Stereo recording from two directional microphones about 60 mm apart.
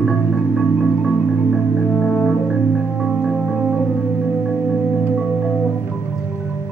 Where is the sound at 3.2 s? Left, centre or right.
Centre.